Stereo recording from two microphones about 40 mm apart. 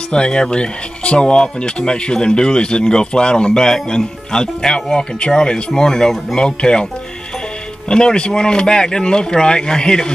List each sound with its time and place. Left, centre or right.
0.1 s speech: left
7.9 s speech: left